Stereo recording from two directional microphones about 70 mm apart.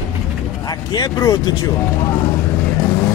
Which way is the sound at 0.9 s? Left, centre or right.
Left.